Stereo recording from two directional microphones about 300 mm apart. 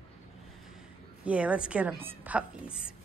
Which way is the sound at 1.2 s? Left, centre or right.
Centre.